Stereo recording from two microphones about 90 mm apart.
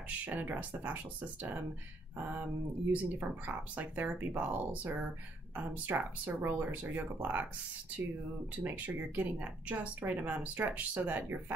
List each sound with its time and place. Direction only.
0.2 s speech: 20° right (ahead or behind)
8.6 s speech: 20° right (ahead or behind)